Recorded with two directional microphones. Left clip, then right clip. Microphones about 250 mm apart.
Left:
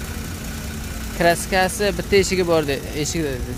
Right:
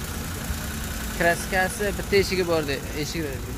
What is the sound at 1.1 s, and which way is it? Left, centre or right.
Speech, centre.